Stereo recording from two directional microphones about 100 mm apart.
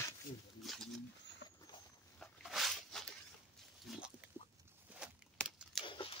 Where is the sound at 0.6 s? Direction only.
Centre (ahead or behind).